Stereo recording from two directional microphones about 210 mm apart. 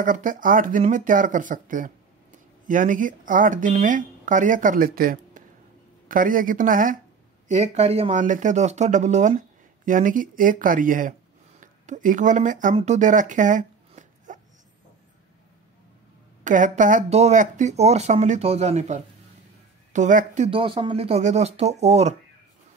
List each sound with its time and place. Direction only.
0.0 s speech: 40° right (ahead or behind)
16.4 s speech: 40° right (ahead or behind)